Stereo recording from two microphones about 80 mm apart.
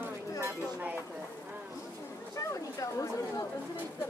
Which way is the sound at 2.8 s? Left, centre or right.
Left.